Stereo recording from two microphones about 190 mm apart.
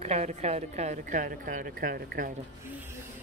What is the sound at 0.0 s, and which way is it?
A woman's voice, 35° right (ahead or behind).